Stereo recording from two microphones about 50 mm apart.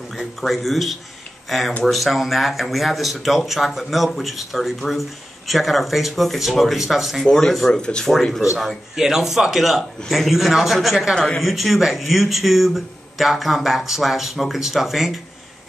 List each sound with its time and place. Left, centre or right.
0.1 s speech: centre
7.2 s speech: centre
7.7 s speech: centre
8.9 s speech: centre